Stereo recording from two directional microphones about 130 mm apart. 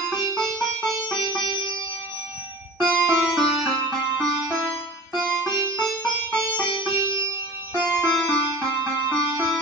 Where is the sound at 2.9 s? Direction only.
15° right (ahead or behind).